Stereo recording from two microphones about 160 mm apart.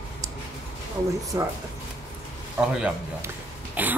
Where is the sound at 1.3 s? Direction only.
20° right (ahead or behind).